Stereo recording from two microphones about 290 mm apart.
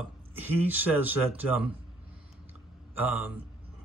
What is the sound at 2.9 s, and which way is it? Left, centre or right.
Speech, centre.